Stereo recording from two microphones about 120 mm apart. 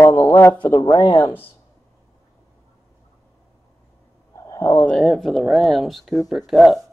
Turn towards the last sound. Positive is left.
turn(degrees=0)  # may be behind; listen again after turning